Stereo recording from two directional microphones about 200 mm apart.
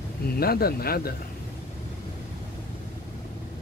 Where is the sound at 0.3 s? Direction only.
50° left (ahead or behind).